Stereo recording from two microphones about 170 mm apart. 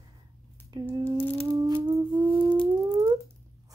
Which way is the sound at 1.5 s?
20° right (ahead or behind).